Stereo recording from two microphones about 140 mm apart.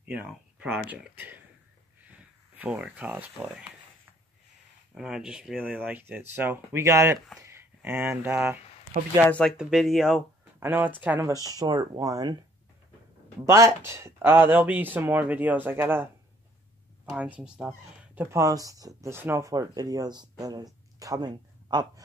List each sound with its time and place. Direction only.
0.0 s speech: 10° right (ahead or behind)
4.9 s speech: 5° right (ahead or behind)
9.2 s speech: 10° left (ahead or behind)
9.6 s speech: centre (ahead or behind)
10.6 s speech: 15° right (ahead or behind)
11.5 s speech: 30° right (ahead or behind)
13.5 s speech: 20° right (ahead or behind)